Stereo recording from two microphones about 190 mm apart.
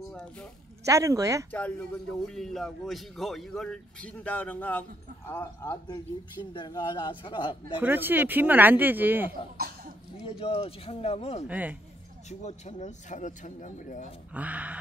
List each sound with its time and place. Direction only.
0.1 s speech: 5° left (ahead or behind)
0.8 s speech: 15° right (ahead or behind)
1.5 s a man's voice: 10° left (ahead or behind); by 7.7 s 25° left (ahead or behind)
7.8 s speech: 10° right (ahead or behind)
10.2 s speech: 30° left (ahead or behind)
11.4 s speech: 10° right (ahead or behind)
12.3 s speech: 35° left (ahead or behind)
14.3 s speech: 10° right (ahead or behind)